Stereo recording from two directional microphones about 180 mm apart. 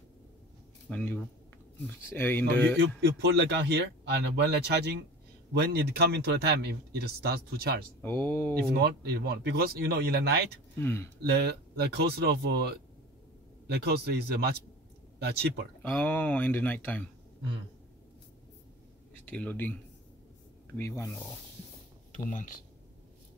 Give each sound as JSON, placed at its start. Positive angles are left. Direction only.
{"t": 0.8, "sound": "speech", "side_deg": 10}
{"t": 3.0, "sound": "speech", "side_deg": -65}
{"t": 8.0, "sound": "speech", "side_deg": 10}
{"t": 8.5, "sound": "speech", "side_deg": -60}
{"t": 10.8, "sound": "speech", "side_deg": 15}
{"t": 11.2, "sound": "speech", "side_deg": -65}
{"t": 15.8, "sound": "speech", "side_deg": 10}
{"t": 19.2, "sound": "speech", "side_deg": 10}
{"t": 22.1, "sound": "speech", "side_deg": 45}